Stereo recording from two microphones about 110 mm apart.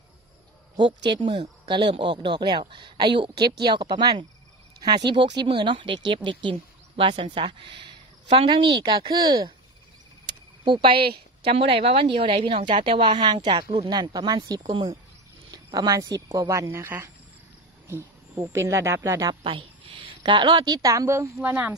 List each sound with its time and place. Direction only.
0.7 s speech: 45° right (ahead or behind)
10.6 s speech: 50° right (ahead or behind)
11.4 s speech: 60° right (ahead or behind); by 19.3 s 30° right (ahead or behind)
19.4 s a woman's voice: 50° right (ahead or behind); by 21.3 s 25° right (ahead or behind)
21.4 s speech: 15° right (ahead or behind)